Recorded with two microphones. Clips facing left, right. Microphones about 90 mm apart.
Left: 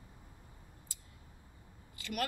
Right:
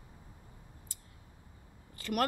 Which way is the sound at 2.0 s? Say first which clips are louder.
Right 6 dB; 45° right (ahead or behind).